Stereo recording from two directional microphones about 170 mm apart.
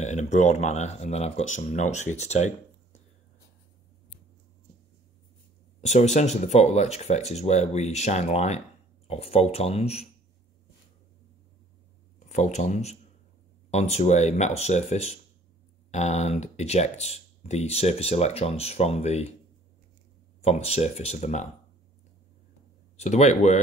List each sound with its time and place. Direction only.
0.0 s speech: 45° left (ahead or behind)
5.8 s speech: 40° left (ahead or behind)
12.3 s speech: 45° left (ahead or behind)
20.4 s speech: 35° left (ahead or behind)
22.9 s speech: 40° left (ahead or behind)